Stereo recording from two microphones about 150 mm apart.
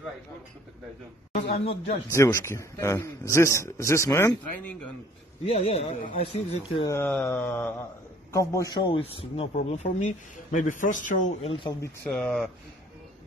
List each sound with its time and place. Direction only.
1.3 s a man's voice: 45° left (ahead or behind)
2.1 s a man's voice: 20° left (ahead or behind)
5.4 s a man's voice: 45° left (ahead or behind)
7.1 s a sound: 10° left (ahead or behind)
8.3 s a man's voice: 20° left (ahead or behind)
9.0 s speech: 40° left (ahead or behind)
9.7 s speech: 55° left (ahead or behind)
11.4 s speech: 35° left (ahead or behind)
12.1 s speech: 5° left (ahead or behind)